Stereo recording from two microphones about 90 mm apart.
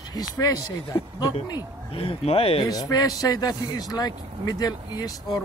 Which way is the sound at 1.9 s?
90° left.